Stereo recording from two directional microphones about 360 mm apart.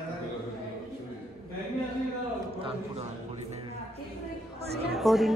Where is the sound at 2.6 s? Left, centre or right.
Centre.